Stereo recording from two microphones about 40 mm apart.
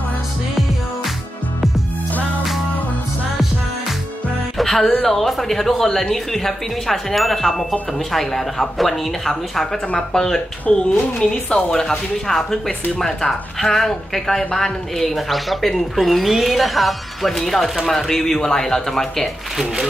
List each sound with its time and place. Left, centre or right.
4.6 s music: centre
5.0 s speech: centre
10.8 s speech: left
11.7 s a woman's voice: centre
19.5 s speech: centre